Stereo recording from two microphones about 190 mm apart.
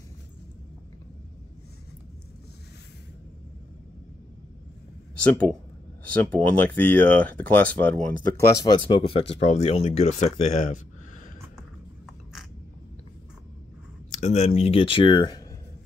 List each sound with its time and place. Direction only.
6.2 s speech: 10° left (ahead or behind)
8.6 s speech: 25° left (ahead or behind)
14.1 s speech: 35° left (ahead or behind)